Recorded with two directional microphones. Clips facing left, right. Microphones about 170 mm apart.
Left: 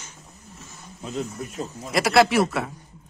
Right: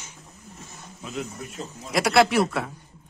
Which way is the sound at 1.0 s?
35° left (ahead or behind).